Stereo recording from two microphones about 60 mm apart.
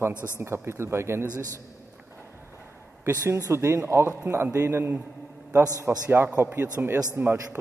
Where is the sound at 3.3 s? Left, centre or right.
Right.